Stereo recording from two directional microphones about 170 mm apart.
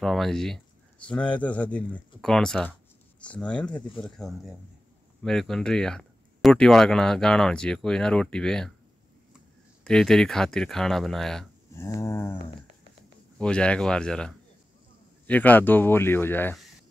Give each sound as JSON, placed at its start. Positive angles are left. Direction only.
{"t": 0.0, "sound": "speech", "side_deg": 0}
{"t": 9.8, "sound": "speech", "side_deg": 5}
{"t": 11.7, "sound": "speech", "side_deg": 15}
{"t": 13.4, "sound": "speech", "side_deg": 5}